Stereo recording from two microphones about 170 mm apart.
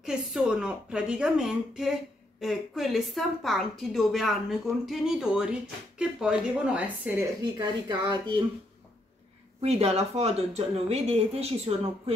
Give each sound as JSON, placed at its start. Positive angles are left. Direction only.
{"t": 0.0, "sound": "a woman's voice", "side_deg": -5}
{"t": 7.5, "sound": "speech", "side_deg": -25}
{"t": 9.6, "sound": "speech", "side_deg": -40}